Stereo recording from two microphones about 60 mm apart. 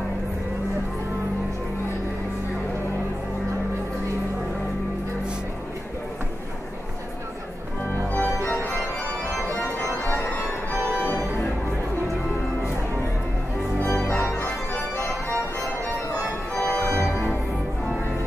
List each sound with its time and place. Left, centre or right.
8.1 s organ: left
14.2 s organ: left
16.5 s music: centre